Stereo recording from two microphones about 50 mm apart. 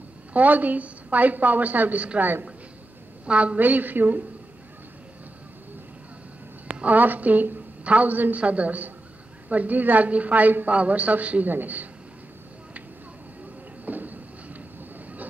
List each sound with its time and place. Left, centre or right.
0.3 s a woman's voice: right
3.3 s a woman's voice: right
3.5 s a woman's voice: right
6.7 s a woman's voice: right
13.8 s a sound: right